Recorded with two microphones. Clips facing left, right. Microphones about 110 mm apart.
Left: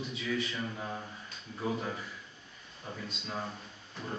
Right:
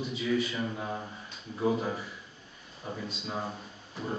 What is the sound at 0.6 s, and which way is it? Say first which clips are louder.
Speech: right 4 dB; 15° right (ahead or behind).